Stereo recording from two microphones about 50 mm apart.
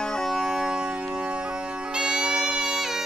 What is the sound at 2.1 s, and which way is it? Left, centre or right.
Music, centre.